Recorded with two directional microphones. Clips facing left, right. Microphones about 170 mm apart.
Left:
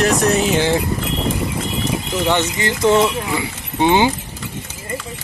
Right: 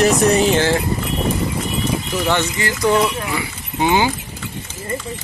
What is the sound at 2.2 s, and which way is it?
Speech, 20° left (ahead or behind).